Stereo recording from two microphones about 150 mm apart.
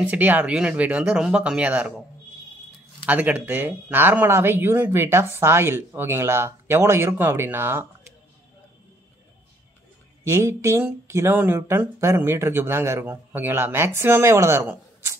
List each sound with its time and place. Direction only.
0.0 s speech: 10° right (ahead or behind)
3.1 s speech: 10° right (ahead or behind)
10.2 s speech: 20° right (ahead or behind)